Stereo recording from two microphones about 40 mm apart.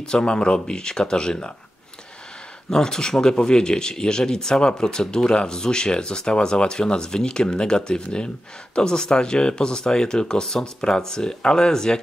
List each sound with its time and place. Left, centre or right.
0.0 s speech: left
2.7 s speech: centre